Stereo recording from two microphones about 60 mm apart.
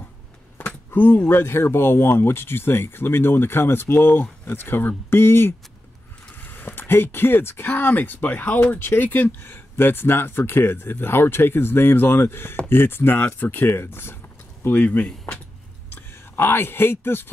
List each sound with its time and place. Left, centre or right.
0.7 s a sound: left
1.3 s speech: left
14.6 s speech: left
15.9 s speech: left